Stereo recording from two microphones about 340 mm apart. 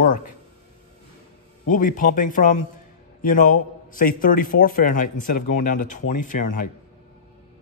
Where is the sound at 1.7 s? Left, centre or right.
Left.